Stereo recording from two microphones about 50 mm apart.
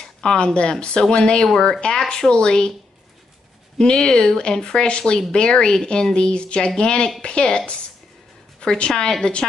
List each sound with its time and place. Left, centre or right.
0.0 s speech: centre
3.7 s a woman's voice: centre